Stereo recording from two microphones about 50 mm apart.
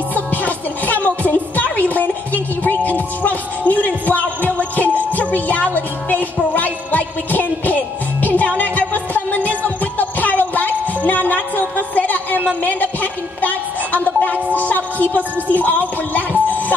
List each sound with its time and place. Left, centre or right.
0.1 s music: left